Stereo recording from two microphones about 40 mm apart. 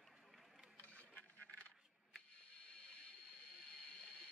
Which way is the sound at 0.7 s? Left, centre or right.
Left.